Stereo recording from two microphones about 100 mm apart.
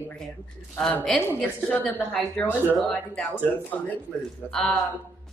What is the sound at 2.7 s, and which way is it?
Speech, 5° left (ahead or behind).